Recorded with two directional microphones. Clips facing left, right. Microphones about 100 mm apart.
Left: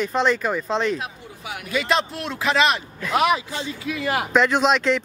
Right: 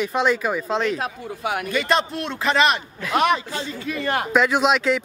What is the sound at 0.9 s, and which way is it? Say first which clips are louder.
Speech: right 3 dB; 60° right (ahead or behind).